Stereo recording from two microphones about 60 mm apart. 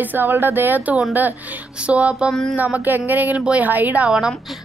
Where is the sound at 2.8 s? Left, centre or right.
Right.